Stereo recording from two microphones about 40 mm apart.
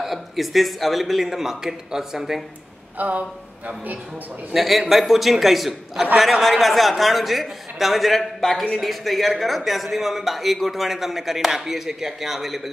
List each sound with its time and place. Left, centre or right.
0.0 s a man's voice: centre
3.0 s speech: right
4.6 s speech: centre